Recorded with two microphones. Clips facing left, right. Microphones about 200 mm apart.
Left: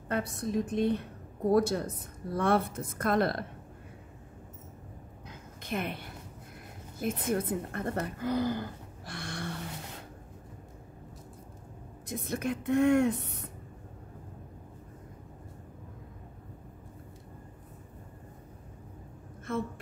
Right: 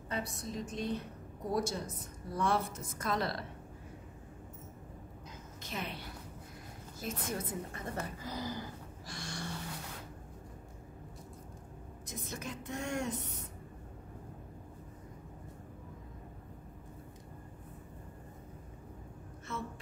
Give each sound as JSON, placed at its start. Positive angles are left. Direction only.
{"t": 0.1, "sound": "a woman's voice", "side_deg": 55}
{"t": 5.6, "sound": "a woman's voice", "side_deg": 55}
{"t": 8.2, "sound": "gasp", "side_deg": 60}
{"t": 12.1, "sound": "a woman's voice", "side_deg": 60}
{"t": 19.5, "sound": "a sound", "side_deg": 55}